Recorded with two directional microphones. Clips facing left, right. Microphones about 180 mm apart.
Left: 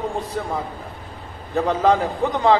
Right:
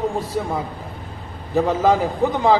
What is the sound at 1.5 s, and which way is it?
A man's voice, 5° right (ahead or behind).